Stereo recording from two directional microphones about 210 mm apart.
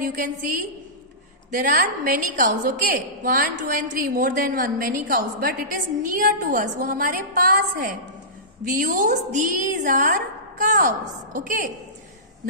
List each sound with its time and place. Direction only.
0.0 s a woman's voice: 40° right (ahead or behind)